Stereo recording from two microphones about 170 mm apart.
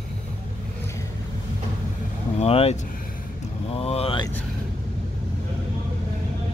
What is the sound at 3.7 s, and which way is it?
Vehicle, 35° left (ahead or behind).